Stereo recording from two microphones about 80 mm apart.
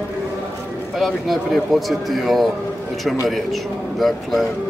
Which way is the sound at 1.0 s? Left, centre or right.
Centre.